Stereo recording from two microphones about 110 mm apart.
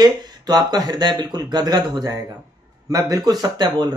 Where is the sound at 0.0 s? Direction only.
40° right (ahead or behind).